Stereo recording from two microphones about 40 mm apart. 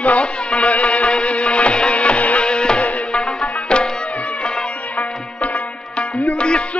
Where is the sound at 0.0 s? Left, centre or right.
Left.